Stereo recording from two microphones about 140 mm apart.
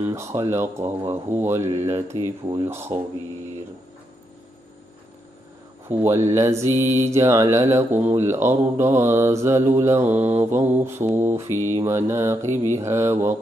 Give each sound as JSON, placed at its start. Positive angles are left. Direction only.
{"t": 0.0, "sound": "speech", "side_deg": -20}
{"t": 5.9, "sound": "speech", "side_deg": -15}
{"t": 10.1, "sound": "mantra", "side_deg": -50}
{"t": 10.7, "sound": "speech", "side_deg": -15}